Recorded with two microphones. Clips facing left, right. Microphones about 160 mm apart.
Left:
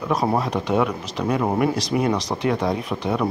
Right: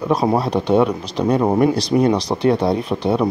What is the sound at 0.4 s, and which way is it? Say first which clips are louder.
Speech: right 5 dB; 30° right (ahead or behind).